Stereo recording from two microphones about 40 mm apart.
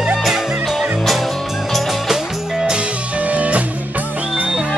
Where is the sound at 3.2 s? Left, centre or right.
Right.